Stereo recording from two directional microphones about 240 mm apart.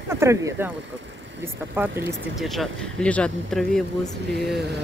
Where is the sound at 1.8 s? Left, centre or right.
Centre.